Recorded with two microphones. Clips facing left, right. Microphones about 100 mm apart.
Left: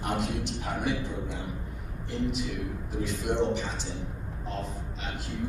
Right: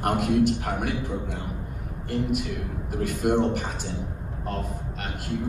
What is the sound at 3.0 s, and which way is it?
Speech, 55° right (ahead or behind).